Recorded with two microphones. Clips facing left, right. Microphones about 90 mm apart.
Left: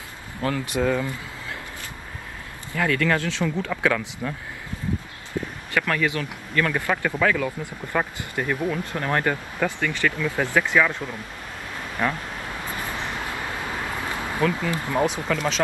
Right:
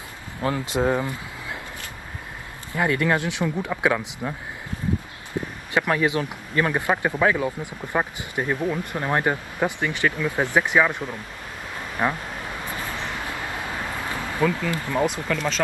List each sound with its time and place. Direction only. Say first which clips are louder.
0.4 s speech: right 1 dB; 25° right (ahead or behind)
2.7 s speech: right 1 dB; 20° right (ahead or behind)
5.7 s speech: right 2 dB; 20° right (ahead or behind)
14.6 s speech: even; 15° left (ahead or behind)
15.0 s speech: left 1 dB; 5° left (ahead or behind)